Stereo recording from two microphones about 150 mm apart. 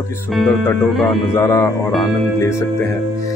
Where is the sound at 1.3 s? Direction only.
20° left (ahead or behind).